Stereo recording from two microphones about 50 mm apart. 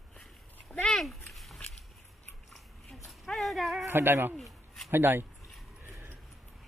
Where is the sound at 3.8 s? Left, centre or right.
Right.